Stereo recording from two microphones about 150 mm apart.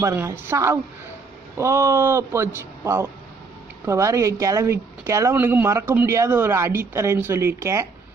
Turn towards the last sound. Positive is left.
turn(degrees=-20)  # may be behind; listen again after turning